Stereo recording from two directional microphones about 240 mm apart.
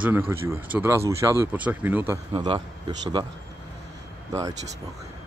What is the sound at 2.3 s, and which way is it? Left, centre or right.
Speech, centre.